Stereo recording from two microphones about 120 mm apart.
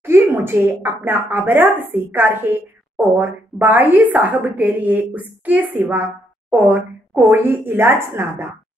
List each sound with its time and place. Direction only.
0.0 s speech: 20° right (ahead or behind)